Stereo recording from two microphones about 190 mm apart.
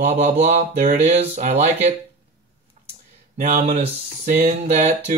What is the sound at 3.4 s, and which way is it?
Speech, 35° right (ahead or behind).